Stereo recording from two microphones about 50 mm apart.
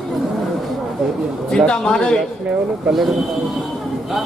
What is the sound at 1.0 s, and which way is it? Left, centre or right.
Speech, centre.